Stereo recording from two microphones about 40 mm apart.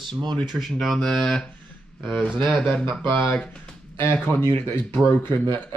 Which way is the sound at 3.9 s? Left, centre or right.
Left.